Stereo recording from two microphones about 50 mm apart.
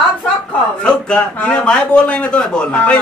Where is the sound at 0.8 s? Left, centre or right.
Centre.